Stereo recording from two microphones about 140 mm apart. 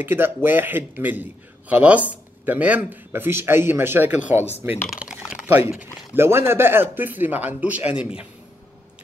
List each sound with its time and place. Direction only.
0.0 s speech: 15° right (ahead or behind)
4.8 s typing: 5° right (ahead or behind)
5.7 s speech: 10° right (ahead or behind)